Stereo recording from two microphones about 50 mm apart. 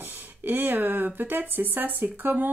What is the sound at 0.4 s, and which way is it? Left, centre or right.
Speech, right.